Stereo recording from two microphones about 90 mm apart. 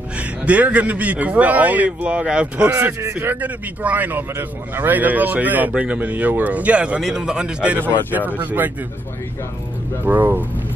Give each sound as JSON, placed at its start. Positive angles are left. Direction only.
{"t": 0.5, "sound": "speech", "side_deg": -15}
{"t": 3.0, "sound": "a man's voice", "side_deg": -25}
{"t": 7.0, "sound": "a man's voice", "side_deg": -5}
{"t": 10.0, "sound": "a man's voice", "side_deg": -20}